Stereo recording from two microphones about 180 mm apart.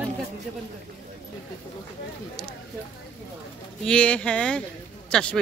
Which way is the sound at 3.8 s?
5° left (ahead or behind).